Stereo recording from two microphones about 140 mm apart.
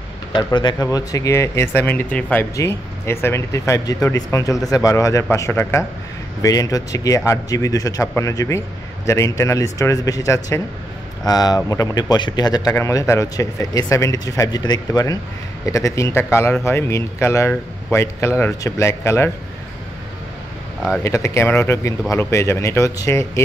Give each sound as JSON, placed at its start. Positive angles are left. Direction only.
{"t": 0.3, "sound": "speech", "side_deg": 35}
{"t": 2.5, "sound": "speech", "side_deg": 20}
{"t": 21.0, "sound": "speech", "side_deg": 20}